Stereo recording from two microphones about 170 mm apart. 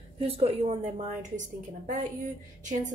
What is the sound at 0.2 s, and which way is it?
A woman's voice, 35° right (ahead or behind).